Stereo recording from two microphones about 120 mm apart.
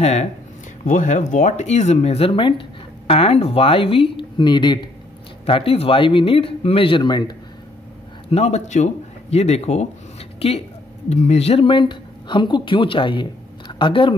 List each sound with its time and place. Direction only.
0.0 s speech: 70° left (ahead or behind)
0.8 s speech: 90° left; by 2.6 s 45° left (ahead or behind)
3.1 s speech: 55° left (ahead or behind); by 7.3 s 40° left (ahead or behind)
8.3 s speech: 65° left (ahead or behind)
11.1 s speech: 70° left (ahead or behind); by 14.1 s 45° left (ahead or behind)